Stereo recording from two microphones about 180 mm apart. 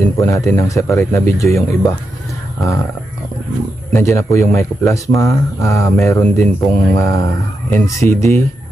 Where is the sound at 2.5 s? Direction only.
15° left (ahead or behind).